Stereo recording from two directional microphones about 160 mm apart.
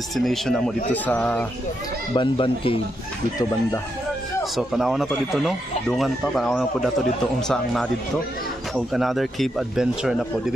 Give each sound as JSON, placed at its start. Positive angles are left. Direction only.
{"t": 0.1, "sound": "speech", "side_deg": 0}
{"t": 2.1, "sound": "speech", "side_deg": 30}
{"t": 4.6, "sound": "speech", "side_deg": 0}